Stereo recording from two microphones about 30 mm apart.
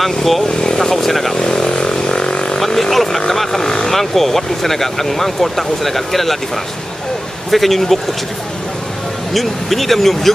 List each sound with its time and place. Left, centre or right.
0.0 s speech: centre
0.6 s speech: centre
1.3 s vehicle: left
2.6 s speech: centre
7.5 s speech: centre
9.3 s speech: centre